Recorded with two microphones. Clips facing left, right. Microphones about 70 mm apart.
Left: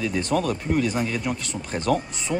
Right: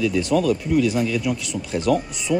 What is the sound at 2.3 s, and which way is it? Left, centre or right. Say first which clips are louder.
Speech: right 5 dB; left.